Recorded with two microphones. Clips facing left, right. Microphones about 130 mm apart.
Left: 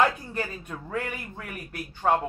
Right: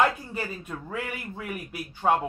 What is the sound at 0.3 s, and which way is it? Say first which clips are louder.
A man's voice: left 1 dB; 5° right (ahead or behind).